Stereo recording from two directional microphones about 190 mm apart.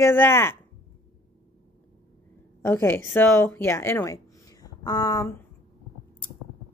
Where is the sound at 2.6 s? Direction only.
15° left (ahead or behind).